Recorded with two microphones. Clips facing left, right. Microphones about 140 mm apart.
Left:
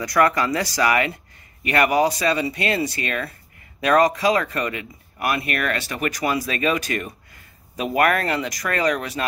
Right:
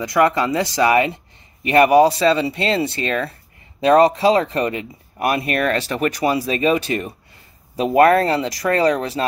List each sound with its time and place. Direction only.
0.0 s speech: 25° right (ahead or behind)